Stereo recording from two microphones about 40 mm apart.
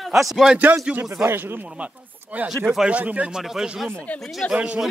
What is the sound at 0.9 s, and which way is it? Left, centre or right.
Speech, right.